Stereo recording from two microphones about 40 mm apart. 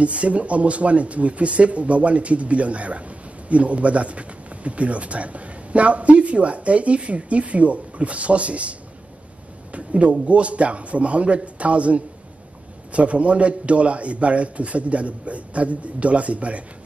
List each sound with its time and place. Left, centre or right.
0.0 s speech: right